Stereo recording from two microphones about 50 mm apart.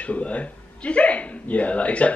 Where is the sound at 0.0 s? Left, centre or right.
Left.